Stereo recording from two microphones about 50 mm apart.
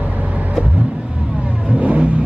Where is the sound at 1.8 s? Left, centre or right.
Right.